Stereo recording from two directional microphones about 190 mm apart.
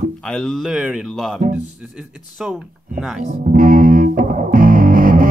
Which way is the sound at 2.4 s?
5° right (ahead or behind).